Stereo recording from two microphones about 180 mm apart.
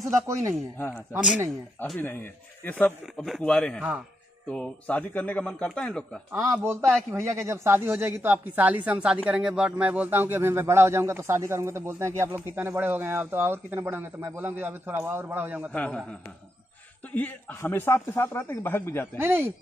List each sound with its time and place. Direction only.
0.3 s speech: 15° right (ahead or behind)
0.7 s speech: 10° left (ahead or behind)
6.4 s speech: 15° right (ahead or behind)
15.7 s speech: 5° left (ahead or behind)
17.1 s speech: 10° left (ahead or behind)
19.1 s speech: 10° right (ahead or behind)